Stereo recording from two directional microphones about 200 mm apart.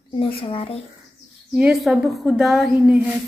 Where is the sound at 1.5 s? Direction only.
5° right (ahead or behind).